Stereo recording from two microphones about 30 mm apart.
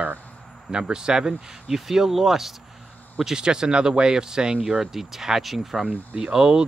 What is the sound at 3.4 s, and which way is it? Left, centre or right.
Speech, right.